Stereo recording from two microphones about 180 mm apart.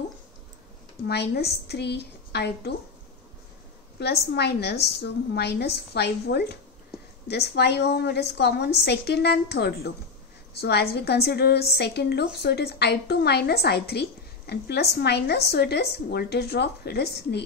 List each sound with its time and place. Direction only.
1.0 s a woman's voice: 65° left (ahead or behind)
4.0 s a woman's voice: 65° left (ahead or behind)